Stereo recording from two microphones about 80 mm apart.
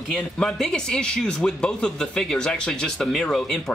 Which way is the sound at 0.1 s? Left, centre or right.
Centre.